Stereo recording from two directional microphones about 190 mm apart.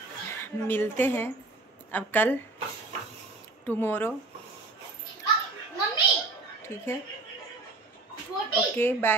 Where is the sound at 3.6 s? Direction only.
10° left (ahead or behind).